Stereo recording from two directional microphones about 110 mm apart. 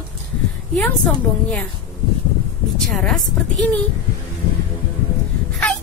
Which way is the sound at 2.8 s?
5° left (ahead or behind).